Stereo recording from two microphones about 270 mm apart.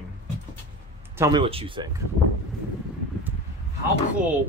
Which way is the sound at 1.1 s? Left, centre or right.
Centre.